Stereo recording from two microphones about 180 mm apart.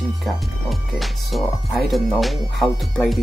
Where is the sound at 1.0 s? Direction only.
Centre (ahead or behind).